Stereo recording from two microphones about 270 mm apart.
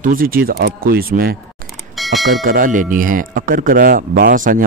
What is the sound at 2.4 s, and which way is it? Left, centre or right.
Speech, right.